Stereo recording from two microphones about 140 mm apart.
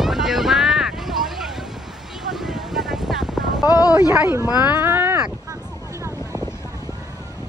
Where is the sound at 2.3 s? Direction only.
Centre (ahead or behind).